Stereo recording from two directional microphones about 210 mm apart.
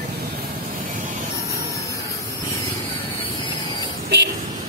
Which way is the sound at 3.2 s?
25° left (ahead or behind).